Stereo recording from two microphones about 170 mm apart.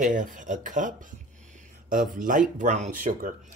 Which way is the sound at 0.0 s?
50° right (ahead or behind).